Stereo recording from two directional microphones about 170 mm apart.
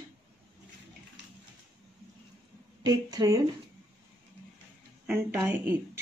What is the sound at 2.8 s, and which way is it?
Speech, 20° right (ahead or behind).